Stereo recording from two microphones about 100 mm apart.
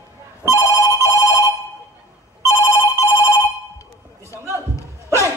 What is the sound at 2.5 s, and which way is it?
Ringtone, 30° left (ahead or behind).